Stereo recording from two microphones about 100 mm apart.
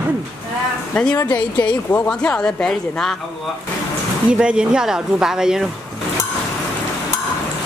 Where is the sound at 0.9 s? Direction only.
10° left (ahead or behind).